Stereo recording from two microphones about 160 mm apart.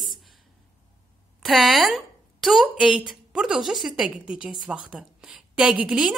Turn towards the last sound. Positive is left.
turn(degrees=-5)  # may be behind; listen again after turning